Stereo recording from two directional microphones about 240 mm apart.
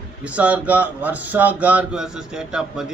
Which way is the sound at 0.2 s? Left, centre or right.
Centre.